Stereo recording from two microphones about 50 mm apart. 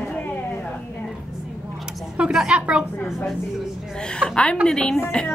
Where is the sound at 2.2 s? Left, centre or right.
Right.